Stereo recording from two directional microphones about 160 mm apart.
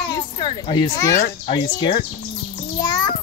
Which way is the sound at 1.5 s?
30° left (ahead or behind).